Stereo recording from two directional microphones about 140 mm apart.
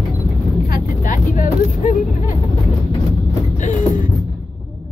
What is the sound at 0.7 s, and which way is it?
Vehicle, 70° left (ahead or behind).